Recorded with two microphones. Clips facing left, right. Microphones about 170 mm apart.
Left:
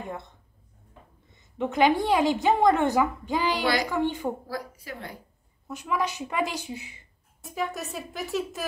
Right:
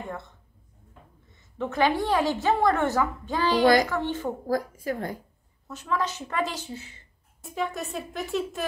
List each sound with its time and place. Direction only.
1.6 s a woman's voice: 15° left (ahead or behind)
3.6 s a woman's voice: 45° right (ahead or behind)
3.9 s a woman's voice: 15° left (ahead or behind)
4.5 s a woman's voice: 45° right (ahead or behind)
5.7 s a woman's voice: 15° left (ahead or behind)
7.4 s a woman's voice: centre (ahead or behind)